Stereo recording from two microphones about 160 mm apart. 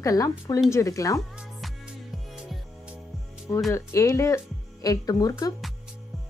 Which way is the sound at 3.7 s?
15° left (ahead or behind).